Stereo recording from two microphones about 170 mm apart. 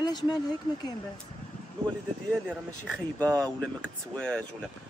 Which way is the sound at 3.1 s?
5° left (ahead or behind).